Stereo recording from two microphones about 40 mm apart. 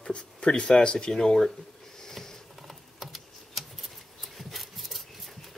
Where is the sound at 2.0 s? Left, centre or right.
Centre.